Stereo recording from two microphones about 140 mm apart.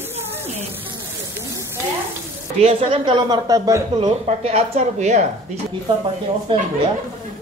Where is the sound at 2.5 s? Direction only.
45° right (ahead or behind).